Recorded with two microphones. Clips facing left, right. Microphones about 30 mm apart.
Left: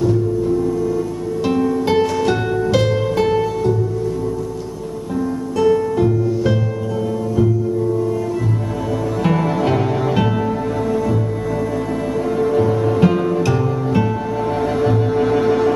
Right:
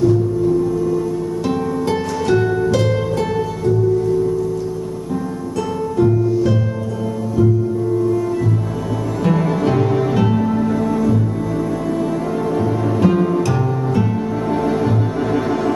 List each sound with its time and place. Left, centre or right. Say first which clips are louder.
1.5 s music: left 5 dB; centre
1.9 s music: even; centre
5.6 s music: left 3 dB; centre
9.2 s music: right 1 dB; centre
12.4 s music: left 5 dB; centre
14.8 s music: left 3 dB; centre